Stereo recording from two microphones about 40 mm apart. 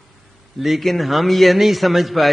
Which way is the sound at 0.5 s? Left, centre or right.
Centre.